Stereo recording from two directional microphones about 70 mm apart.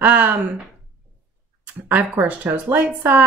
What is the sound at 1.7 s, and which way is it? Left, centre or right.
Speech, right.